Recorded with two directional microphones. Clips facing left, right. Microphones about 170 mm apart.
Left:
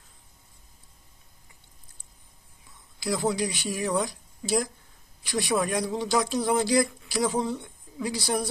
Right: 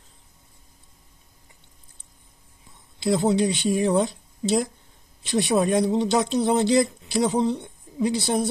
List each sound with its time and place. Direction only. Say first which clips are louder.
3.0 s speech: right 6 dB; 25° right (ahead or behind)